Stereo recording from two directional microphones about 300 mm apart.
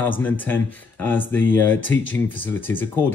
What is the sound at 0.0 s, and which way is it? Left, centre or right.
Speech, centre.